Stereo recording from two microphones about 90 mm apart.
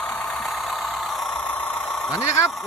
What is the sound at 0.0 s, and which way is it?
Vehicle, centre (ahead or behind).